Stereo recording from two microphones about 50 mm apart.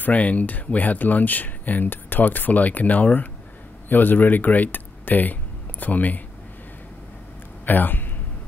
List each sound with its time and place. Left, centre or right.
0.0 s speech: left
7.6 s speech: left